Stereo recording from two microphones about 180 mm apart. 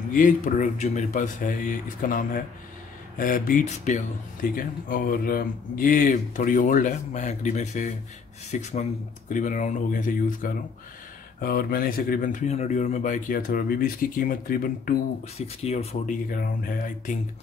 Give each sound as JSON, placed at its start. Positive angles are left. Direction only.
{"t": 0.1, "sound": "speech", "side_deg": 50}
{"t": 15.3, "sound": "speech", "side_deg": 35}
{"t": 16.3, "sound": "speech", "side_deg": 50}